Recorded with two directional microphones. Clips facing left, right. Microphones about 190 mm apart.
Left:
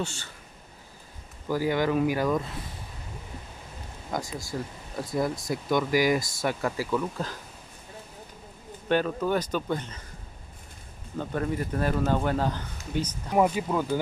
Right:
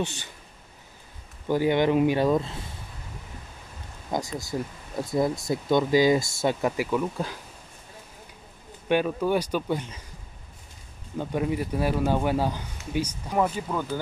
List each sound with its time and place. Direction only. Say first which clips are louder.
0.0 s a man's voice: right 3 dB; 15° right (ahead or behind)
1.5 s speech: right 3 dB; 25° right (ahead or behind)
4.1 s speech: right 3 dB; 20° right (ahead or behind)
8.8 s a man's voice: right 2 dB; 10° right (ahead or behind)
11.1 s a man's voice: right 2 dB; 10° right (ahead or behind)
13.3 s speech: left 3 dB; 10° left (ahead or behind)